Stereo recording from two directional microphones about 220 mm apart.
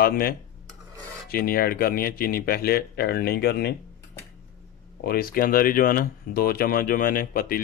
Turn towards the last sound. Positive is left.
turn(degrees=40)  # may be behind; listen again after turning